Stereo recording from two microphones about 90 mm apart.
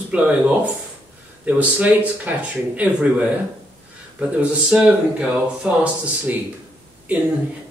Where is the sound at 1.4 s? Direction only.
15° right (ahead or behind).